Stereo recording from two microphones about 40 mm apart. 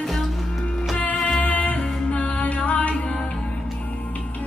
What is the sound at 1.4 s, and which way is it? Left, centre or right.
Music, left.